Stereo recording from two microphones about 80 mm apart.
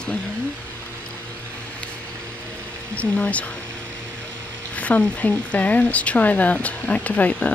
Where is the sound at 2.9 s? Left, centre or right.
Centre.